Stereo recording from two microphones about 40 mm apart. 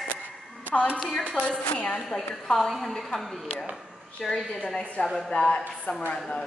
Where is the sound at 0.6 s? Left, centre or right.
Left.